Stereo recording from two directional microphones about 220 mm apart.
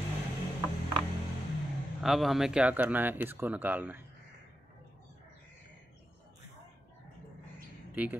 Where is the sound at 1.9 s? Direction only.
Centre (ahead or behind).